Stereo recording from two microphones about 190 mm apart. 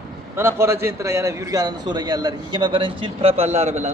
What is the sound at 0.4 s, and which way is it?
A man's voice, 15° right (ahead or behind).